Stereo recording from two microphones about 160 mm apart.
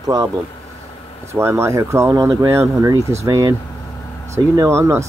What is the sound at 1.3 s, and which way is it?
Speech, 15° right (ahead or behind).